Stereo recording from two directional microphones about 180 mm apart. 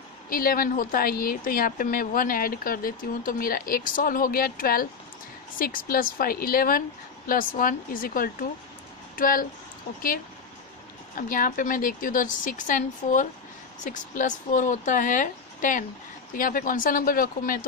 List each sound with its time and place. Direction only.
0.3 s a woman's voice: 55° left (ahead or behind)
11.1 s a woman's voice: 50° left (ahead or behind)